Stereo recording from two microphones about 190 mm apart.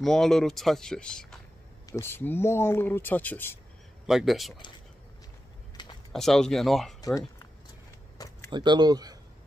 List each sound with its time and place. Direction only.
0.0 s speech: centre (ahead or behind)
4.0 s speech: centre (ahead or behind)
5.8 s a sound: 25° left (ahead or behind)
6.1 s speech: centre (ahead or behind)
7.0 s speech: 15° left (ahead or behind)
8.5 s speech: 25° right (ahead or behind)